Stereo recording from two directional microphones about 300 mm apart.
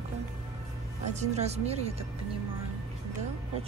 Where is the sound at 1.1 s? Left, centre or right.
Right.